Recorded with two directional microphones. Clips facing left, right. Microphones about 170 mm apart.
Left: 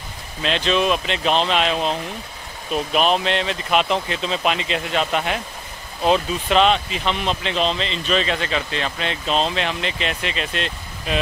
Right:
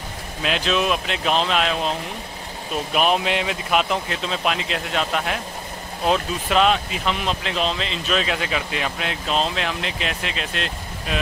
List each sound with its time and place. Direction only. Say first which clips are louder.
0.4 s a man's voice: left 2 dB; 5° right (ahead or behind)
2.9 s a man's voice: left 1 dB; 10° right (ahead or behind)